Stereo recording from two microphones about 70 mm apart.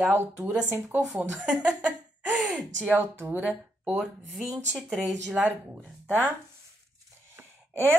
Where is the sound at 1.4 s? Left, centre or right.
Centre.